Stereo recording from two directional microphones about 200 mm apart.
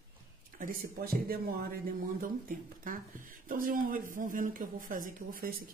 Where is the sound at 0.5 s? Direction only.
45° right (ahead or behind).